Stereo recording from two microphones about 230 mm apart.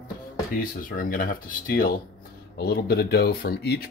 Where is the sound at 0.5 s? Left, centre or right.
Left.